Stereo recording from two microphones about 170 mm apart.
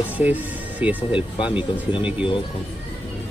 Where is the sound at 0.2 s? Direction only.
10° right (ahead or behind).